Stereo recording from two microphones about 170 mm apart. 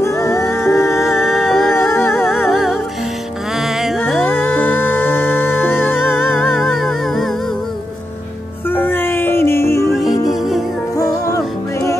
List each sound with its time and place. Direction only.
0.0 s music: 20° left (ahead or behind)
0.5 s music: centre (ahead or behind)
0.7 s music: 15° left (ahead or behind)
1.0 s music: centre (ahead or behind)
1.8 s music: 15° left (ahead or behind)
2.4 s music: centre (ahead or behind)
4.2 s music: 10° left (ahead or behind)
6.1 s music: centre (ahead or behind)
8.6 s music: 10° left (ahead or behind)
11.0 s music: 20° left (ahead or behind)